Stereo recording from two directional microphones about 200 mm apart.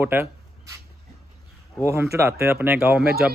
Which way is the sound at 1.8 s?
15° right (ahead or behind).